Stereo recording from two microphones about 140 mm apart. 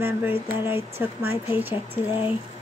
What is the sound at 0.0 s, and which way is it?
Speech, 15° right (ahead or behind).